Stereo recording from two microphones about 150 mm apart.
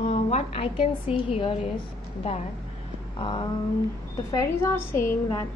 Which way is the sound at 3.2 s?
35° left (ahead or behind).